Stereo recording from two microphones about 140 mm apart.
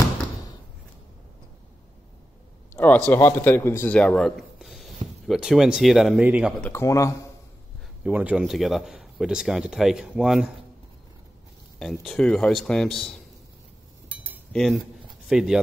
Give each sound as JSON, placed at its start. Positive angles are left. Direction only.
{"t": 2.7, "sound": "a man's voice", "side_deg": 15}
{"t": 6.6, "sound": "speech", "side_deg": 20}
{"t": 8.0, "sound": "speech", "side_deg": -10}
{"t": 11.8, "sound": "speech", "side_deg": 0}
{"t": 14.5, "sound": "speech", "side_deg": 0}